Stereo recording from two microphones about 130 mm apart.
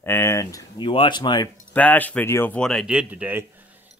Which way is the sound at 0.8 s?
40° left (ahead or behind).